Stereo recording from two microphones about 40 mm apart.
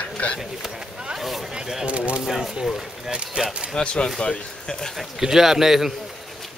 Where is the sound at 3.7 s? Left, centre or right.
Left.